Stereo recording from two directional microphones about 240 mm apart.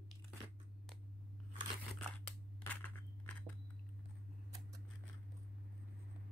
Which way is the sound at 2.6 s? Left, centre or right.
Centre.